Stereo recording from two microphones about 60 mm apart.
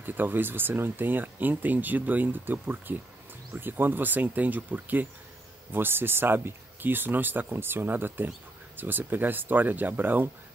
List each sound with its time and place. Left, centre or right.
0.0 s speech: right